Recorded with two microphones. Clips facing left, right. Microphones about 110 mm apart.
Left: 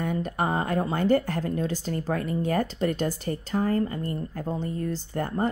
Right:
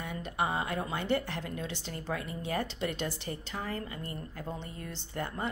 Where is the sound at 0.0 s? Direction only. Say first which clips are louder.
Left 6 dB; 45° left (ahead or behind).